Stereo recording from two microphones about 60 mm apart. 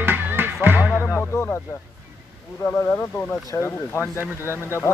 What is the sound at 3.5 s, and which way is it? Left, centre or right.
Speech, left.